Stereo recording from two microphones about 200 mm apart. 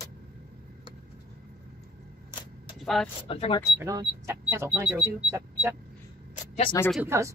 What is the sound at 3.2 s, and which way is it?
Speech, 30° left (ahead or behind).